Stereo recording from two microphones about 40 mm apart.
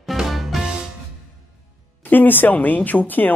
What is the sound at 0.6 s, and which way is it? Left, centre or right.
Music, centre.